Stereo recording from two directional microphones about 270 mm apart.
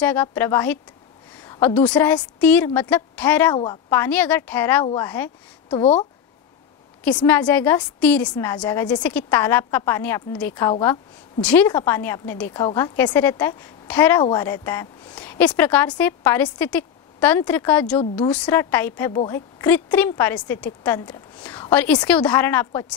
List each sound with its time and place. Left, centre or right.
0.0 s a woman's voice: centre
3.5 s a woman's voice: centre
5.7 s speech: left
7.2 s a woman's voice: centre